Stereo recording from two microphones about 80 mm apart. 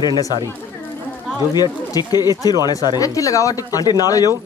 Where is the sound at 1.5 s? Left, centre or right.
Left.